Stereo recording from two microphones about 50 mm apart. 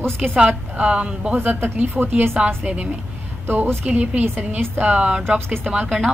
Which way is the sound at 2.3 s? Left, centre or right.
Right.